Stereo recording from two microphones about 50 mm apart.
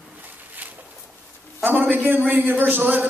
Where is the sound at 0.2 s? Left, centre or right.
Right.